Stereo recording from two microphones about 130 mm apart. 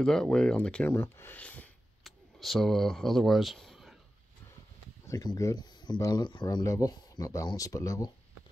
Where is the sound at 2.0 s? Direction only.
Centre (ahead or behind).